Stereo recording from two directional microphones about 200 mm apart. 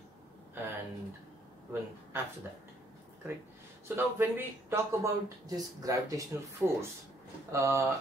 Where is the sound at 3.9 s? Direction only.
10° right (ahead or behind).